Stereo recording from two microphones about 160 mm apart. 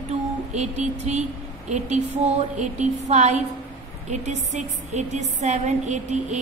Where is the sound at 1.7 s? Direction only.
45° right (ahead or behind).